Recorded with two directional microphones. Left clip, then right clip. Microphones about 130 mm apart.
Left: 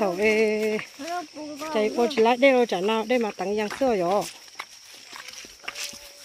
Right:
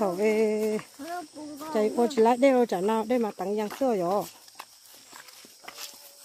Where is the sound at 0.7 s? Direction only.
55° left (ahead or behind).